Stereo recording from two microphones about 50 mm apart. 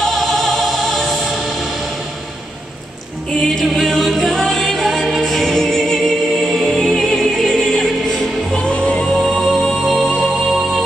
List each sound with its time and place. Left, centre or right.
0.0 s music: centre
1.2 s train: centre
3.3 s music: centre
8.5 s music: left
9.1 s music: centre